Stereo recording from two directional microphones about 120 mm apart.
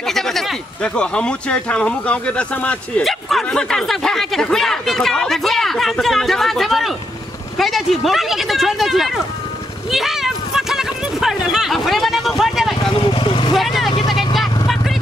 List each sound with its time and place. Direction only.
0.0 s speech: 5° left (ahead or behind)
3.1 s speech: centre (ahead or behind)
12.9 s vehicle: 45° left (ahead or behind)
13.6 s speech: centre (ahead or behind)
14.0 s vehicle: centre (ahead or behind)